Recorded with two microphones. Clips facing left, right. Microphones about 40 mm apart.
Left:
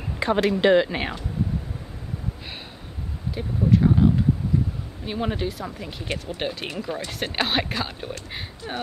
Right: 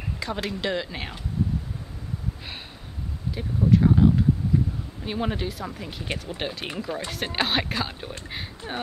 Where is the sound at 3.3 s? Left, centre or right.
Centre.